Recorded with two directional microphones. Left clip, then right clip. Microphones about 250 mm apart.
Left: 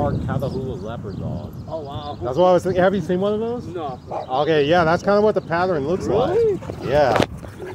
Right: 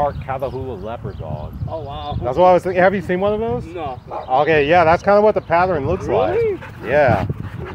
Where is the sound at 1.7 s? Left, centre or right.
Right.